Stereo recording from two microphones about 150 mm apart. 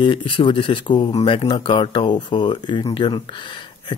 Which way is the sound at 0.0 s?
35° left (ahead or behind).